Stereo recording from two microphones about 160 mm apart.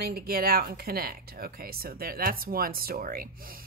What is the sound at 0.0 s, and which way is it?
Speech, 70° right (ahead or behind).